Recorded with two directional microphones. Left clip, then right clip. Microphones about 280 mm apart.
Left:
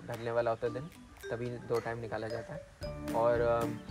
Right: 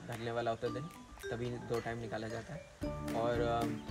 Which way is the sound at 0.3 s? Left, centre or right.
Centre.